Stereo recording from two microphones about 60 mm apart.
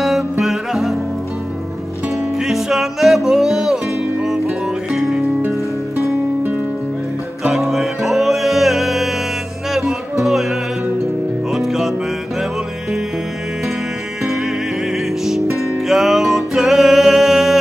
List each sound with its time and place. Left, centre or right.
0.0 s music: centre
2.3 s music: centre
7.4 s music: centre
14.2 s music: centre